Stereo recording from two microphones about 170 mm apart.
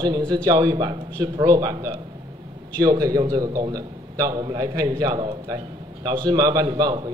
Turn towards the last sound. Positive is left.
turn(degrees=-25)  # may be behind; listen again after turning